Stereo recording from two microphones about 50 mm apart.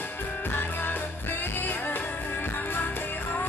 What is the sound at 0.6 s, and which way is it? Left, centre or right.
Music, left.